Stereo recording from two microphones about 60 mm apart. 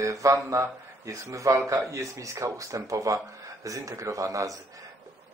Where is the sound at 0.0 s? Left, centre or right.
Right.